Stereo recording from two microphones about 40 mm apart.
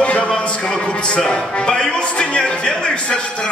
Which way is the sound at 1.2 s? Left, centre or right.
Left.